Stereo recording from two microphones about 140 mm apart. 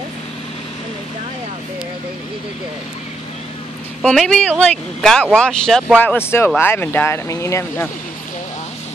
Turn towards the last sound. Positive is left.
turn(degrees=20)  # may be behind; listen again after turning